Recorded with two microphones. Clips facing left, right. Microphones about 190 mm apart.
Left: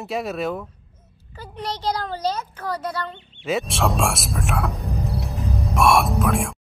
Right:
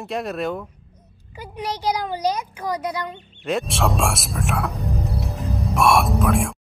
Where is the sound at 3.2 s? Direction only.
45° right (ahead or behind).